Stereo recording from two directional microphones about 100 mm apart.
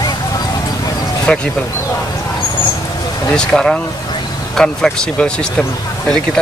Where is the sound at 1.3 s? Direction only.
10° left (ahead or behind).